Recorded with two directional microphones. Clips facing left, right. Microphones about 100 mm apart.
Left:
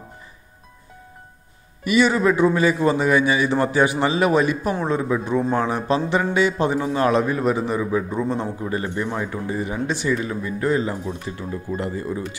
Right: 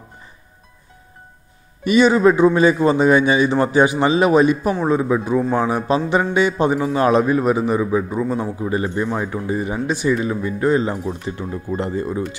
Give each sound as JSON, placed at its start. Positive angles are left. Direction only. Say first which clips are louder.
{"t": 1.9, "sound": "a man's voice", "louder": "right 4 dB", "side_deg": -20}